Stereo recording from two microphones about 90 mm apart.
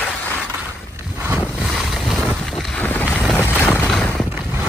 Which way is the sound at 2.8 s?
15° left (ahead or behind).